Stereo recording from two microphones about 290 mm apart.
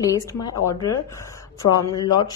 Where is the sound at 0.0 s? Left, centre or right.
Centre.